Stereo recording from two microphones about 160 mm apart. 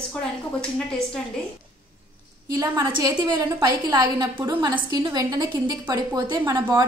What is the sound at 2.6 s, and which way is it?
A woman's voice, 25° right (ahead or behind).